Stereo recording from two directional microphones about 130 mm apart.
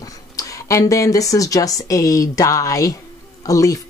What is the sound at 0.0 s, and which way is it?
Speech, 25° left (ahead or behind).